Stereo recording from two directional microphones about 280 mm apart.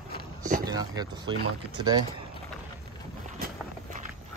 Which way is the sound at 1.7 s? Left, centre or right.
Centre.